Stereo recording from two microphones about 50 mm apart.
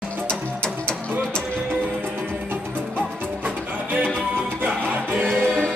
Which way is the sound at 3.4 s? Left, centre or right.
Right.